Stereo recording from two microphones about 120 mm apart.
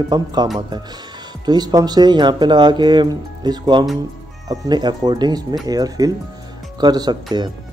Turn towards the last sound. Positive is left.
turn(degrees=-35)  # may be behind; listen again after turning